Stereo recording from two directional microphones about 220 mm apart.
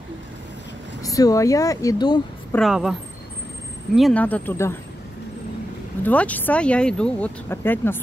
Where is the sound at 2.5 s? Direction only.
Centre (ahead or behind).